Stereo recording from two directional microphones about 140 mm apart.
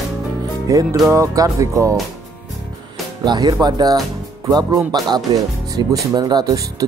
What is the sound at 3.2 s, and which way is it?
Speech, 30° right (ahead or behind).